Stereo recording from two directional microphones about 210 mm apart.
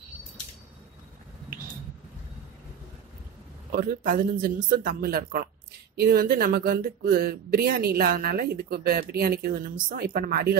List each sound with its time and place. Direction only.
3.7 s speech: 45° right (ahead or behind)